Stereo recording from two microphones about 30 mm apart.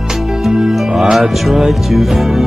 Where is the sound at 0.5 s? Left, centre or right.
Centre.